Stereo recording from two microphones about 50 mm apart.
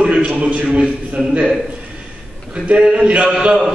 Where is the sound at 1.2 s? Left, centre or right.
Centre.